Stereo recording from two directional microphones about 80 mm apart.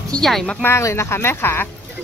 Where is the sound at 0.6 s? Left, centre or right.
Left.